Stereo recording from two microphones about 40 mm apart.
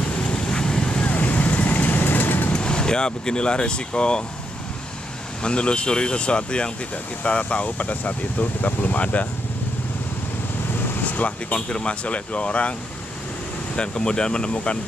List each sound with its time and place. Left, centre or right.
0.1 s vehicle: left
1.0 s vehicle: left
2.5 s speech: left
5.4 s speech: left
11.1 s speech: left
13.7 s speech: left